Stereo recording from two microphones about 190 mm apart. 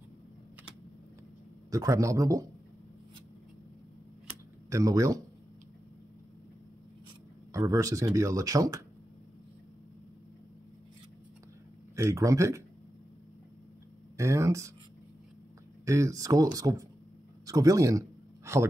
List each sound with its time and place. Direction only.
1.7 s speech: 15° right (ahead or behind)
4.6 s speech: 15° right (ahead or behind)
7.5 s speech: 15° right (ahead or behind)
11.9 s speech: 15° right (ahead or behind)
14.1 s speech: 15° right (ahead or behind)
15.8 s speech: 15° right (ahead or behind)
17.5 s a sound: 20° right (ahead or behind)